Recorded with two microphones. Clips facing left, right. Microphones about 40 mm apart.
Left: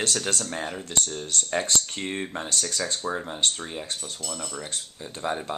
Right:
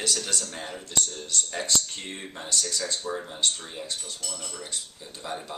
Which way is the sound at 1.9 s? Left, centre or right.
Left.